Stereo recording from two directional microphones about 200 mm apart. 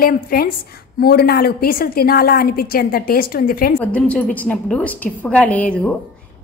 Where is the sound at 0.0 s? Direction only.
45° left (ahead or behind).